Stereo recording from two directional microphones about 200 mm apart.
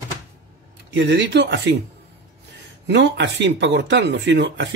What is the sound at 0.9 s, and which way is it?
Speech, 60° right (ahead or behind).